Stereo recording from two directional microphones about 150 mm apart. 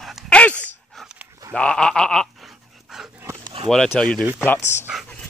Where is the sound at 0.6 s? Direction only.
Centre (ahead or behind).